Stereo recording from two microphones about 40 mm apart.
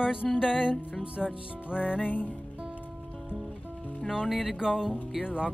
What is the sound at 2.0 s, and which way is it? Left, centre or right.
Music, left.